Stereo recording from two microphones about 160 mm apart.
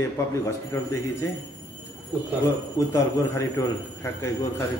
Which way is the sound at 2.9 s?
20° left (ahead or behind).